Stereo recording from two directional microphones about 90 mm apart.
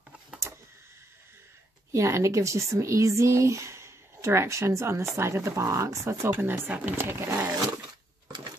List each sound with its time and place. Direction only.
1.9 s speech: 30° right (ahead or behind)